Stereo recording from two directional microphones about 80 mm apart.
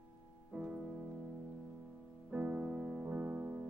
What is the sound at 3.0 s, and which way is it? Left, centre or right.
Music, right.